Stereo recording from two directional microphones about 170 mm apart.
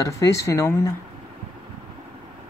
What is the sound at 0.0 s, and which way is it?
Speech, 20° left (ahead or behind).